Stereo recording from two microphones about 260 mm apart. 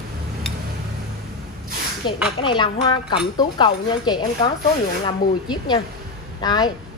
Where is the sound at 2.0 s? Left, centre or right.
Centre.